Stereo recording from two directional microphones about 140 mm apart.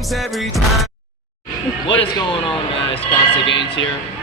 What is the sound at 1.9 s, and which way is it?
A man's voice, 40° left (ahead or behind).